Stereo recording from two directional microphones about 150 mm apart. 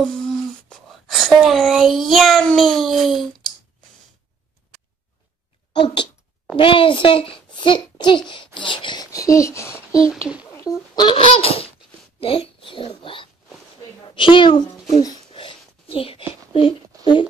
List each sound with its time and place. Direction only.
0.0 s speech: 5° left (ahead or behind)
5.7 s a child's voice: 30° left (ahead or behind)
8.5 s a sound: 30° left (ahead or behind)
10.0 s a child's voice: 5° right (ahead or behind)
10.5 s a sound: 20° left (ahead or behind)
11.1 s laughter: 35° left (ahead or behind)
12.2 s speech: 40° left (ahead or behind)
14.1 s a sound: 35° left (ahead or behind)
16.5 s a child's voice: 35° left (ahead or behind)